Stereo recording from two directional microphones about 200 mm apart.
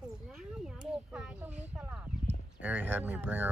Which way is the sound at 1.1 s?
5° right (ahead or behind).